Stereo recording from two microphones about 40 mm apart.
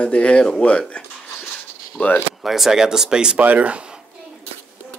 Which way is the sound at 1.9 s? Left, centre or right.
Left.